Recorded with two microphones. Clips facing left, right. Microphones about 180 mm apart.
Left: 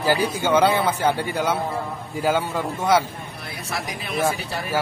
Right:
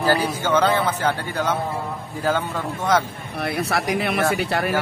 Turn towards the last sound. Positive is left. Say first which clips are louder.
# right 3 dB
turn(degrees=-70)  # may be behind; listen again after turning